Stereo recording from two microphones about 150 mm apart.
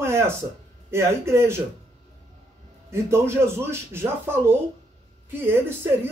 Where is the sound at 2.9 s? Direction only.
15° right (ahead or behind).